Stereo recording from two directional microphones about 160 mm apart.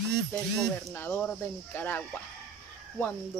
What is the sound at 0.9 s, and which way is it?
Speech, 15° left (ahead or behind).